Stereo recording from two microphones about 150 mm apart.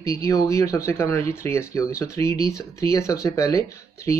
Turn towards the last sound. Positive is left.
turn(degrees=20)  # may be behind; listen again after turning